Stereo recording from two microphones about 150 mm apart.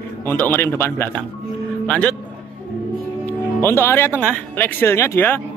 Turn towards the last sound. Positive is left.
turn(degrees=15)  # may be behind; listen again after turning